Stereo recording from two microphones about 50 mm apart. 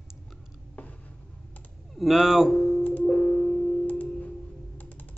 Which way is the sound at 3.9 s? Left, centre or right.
Left.